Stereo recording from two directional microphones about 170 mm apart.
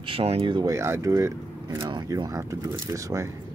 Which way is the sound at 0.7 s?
15° right (ahead or behind).